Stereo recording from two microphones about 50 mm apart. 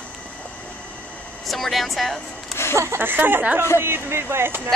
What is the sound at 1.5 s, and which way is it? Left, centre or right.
Speech, centre.